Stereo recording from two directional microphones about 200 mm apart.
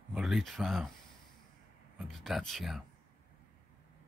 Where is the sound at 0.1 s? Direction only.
Centre (ahead or behind).